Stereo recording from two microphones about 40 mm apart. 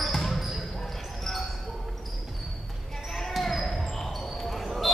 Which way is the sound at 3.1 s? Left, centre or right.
Centre.